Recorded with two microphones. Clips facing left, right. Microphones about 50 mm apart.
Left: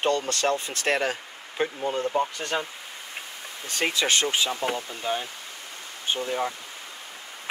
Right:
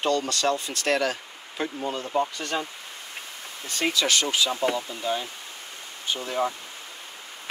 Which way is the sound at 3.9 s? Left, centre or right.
Left.